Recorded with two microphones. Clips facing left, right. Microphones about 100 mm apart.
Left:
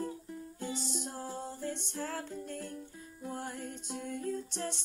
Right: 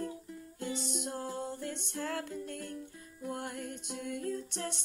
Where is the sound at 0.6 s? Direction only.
60° right (ahead or behind).